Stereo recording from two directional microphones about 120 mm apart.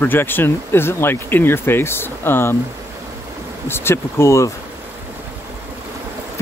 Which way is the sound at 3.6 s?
20° left (ahead or behind).